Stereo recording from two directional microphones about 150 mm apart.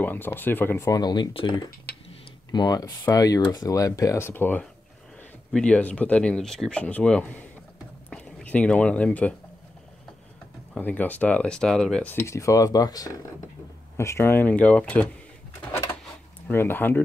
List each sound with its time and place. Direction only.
0.0 s speech: 15° left (ahead or behind)
10.7 s speech: 10° left (ahead or behind)
16.4 s speech: 15° left (ahead or behind)